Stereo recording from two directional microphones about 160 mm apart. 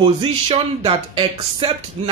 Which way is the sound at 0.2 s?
35° right (ahead or behind).